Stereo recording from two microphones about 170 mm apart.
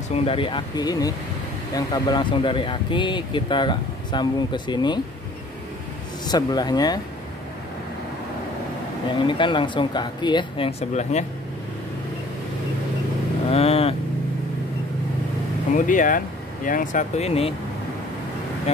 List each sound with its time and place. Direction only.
0.1 s speech: 35° left (ahead or behind)
6.2 s speech: 25° left (ahead or behind)
9.2 s speech: 30° left (ahead or behind)
13.5 s speech: 35° left (ahead or behind)
15.7 s speech: 50° left (ahead or behind)